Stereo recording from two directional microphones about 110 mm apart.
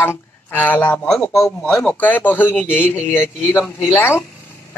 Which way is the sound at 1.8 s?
15° left (ahead or behind).